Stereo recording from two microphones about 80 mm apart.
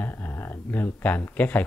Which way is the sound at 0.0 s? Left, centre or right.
Left.